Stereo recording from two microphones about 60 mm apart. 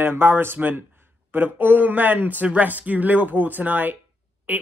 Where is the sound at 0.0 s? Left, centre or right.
Right.